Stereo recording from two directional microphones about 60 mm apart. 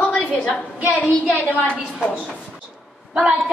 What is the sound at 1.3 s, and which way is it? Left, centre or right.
Speech, left.